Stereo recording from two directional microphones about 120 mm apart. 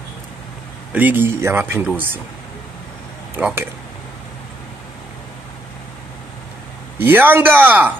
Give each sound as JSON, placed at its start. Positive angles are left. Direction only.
{"t": 0.9, "sound": "speech", "side_deg": -15}
{"t": 3.3, "sound": "speech", "side_deg": -15}
{"t": 7.0, "sound": "speech", "side_deg": -15}